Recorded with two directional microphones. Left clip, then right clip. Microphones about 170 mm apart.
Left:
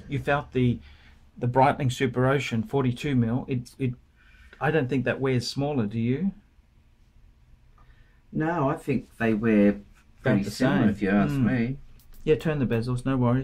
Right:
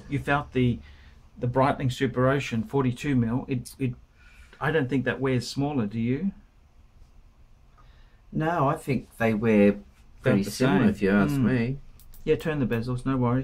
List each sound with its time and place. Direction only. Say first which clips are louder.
0.1 s speech: even; 35° left (ahead or behind)
1.4 s speech: left 3 dB; 45° left (ahead or behind)
8.4 s speech: right 1 dB; 35° right (ahead or behind)
10.2 s speech: right 1 dB; 35° left (ahead or behind)
11.0 s speech: right 1 dB; 40° right (ahead or behind)
12.3 s speech: left 1 dB; 35° left (ahead or behind)